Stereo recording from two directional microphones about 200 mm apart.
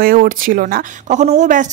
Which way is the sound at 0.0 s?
45° right (ahead or behind).